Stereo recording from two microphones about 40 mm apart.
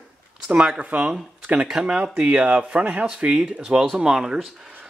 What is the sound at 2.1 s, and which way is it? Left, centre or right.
Speech, right.